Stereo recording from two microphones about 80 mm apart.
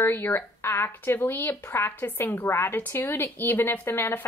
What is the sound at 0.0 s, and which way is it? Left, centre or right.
Speech, left.